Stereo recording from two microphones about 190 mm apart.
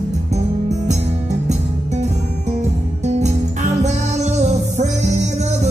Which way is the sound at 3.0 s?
35° right (ahead or behind).